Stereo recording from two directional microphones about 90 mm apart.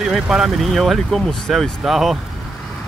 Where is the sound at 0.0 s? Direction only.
5° right (ahead or behind).